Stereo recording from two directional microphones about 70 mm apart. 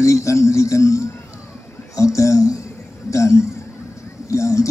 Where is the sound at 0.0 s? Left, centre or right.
Left.